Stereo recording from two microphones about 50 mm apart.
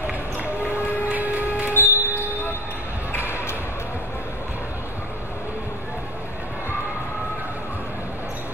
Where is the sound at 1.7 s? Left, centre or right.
Left.